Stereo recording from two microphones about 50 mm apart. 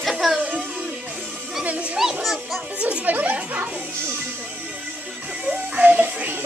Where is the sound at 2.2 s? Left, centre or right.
Centre.